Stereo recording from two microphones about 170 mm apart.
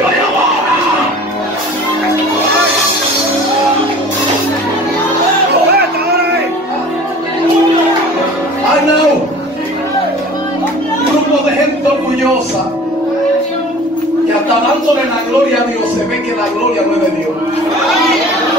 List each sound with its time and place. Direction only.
5.7 s music: 65° right (ahead or behind)